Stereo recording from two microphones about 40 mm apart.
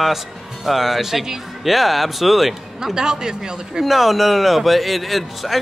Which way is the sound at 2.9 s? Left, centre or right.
Centre.